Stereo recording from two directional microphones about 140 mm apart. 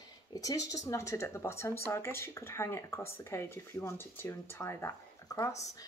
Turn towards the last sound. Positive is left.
turn(degrees=25)  # may be behind; listen again after turning